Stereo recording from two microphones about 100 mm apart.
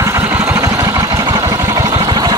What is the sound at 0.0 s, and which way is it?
Vehicle, 25° right (ahead or behind).